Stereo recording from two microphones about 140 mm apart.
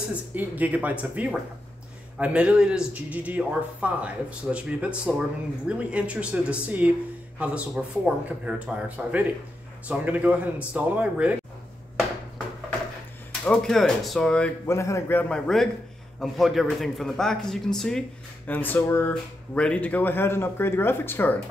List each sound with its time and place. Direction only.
0.1 s speech: 10° right (ahead or behind)
13.3 s a man's voice: 5° left (ahead or behind)
14.7 s a man's voice: 20° left (ahead or behind)